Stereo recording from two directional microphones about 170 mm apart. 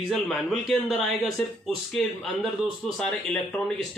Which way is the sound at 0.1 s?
Centre (ahead or behind).